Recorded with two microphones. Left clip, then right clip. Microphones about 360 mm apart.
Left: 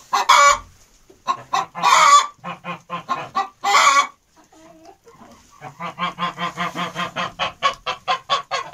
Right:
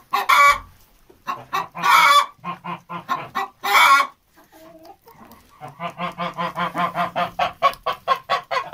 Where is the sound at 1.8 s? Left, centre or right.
Centre.